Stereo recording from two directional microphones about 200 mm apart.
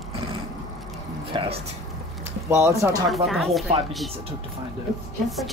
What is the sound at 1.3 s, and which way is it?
Speech, 25° right (ahead or behind).